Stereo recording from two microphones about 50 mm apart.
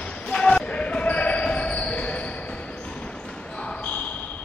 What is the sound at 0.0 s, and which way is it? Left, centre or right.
Basketball bounce, left.